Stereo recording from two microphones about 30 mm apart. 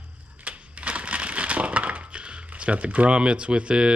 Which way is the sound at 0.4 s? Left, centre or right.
Right.